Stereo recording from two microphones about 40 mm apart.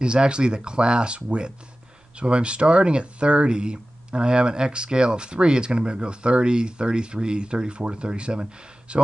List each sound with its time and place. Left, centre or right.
0.0 s speech: right